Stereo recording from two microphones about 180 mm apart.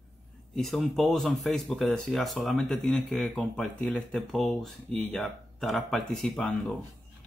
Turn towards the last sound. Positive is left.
turn(degrees=0)  # may be behind; listen again after turning